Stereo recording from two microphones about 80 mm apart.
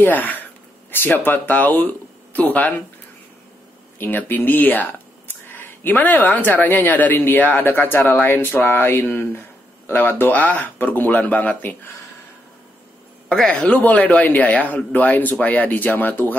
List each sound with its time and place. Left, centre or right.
0.0 s speech: left
4.0 s speech: left
13.3 s speech: centre